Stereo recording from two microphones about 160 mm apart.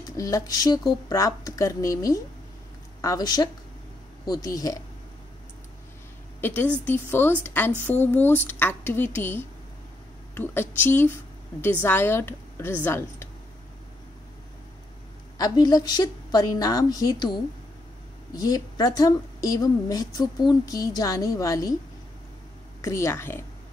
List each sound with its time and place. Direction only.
0.0 s a woman's voice: 20° left (ahead or behind)
6.4 s a woman's voice: 10° left (ahead or behind)
15.3 s a woman's voice: 25° left (ahead or behind)
22.8 s a woman's voice: 20° left (ahead or behind)